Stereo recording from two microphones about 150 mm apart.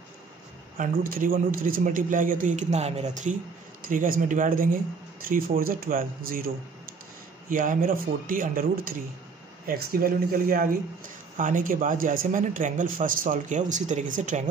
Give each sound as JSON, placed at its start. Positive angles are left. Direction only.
{"t": 0.7, "sound": "speech", "side_deg": -65}
{"t": 3.8, "sound": "speech", "side_deg": -65}
{"t": 9.7, "sound": "speech", "side_deg": -85}